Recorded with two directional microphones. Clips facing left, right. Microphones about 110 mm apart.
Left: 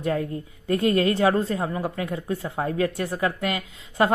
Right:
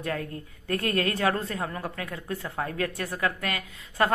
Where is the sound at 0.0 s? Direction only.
25° left (ahead or behind).